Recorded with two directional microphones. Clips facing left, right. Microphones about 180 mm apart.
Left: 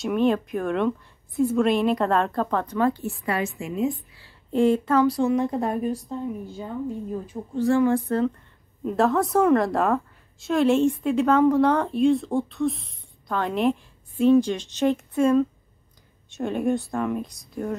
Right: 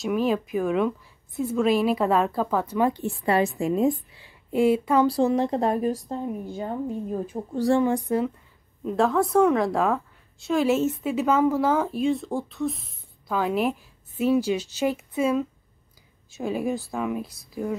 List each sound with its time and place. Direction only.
0.0 s a woman's voice: 5° right (ahead or behind)
3.3 s a woman's voice: 35° right (ahead or behind)
4.2 s speech: 10° right (ahead or behind)
5.0 s a woman's voice: 35° right (ahead or behind)
7.3 s a woman's voice: 35° right (ahead or behind)
7.7 s speech: 15° right (ahead or behind)
8.8 s a woman's voice: centre (ahead or behind)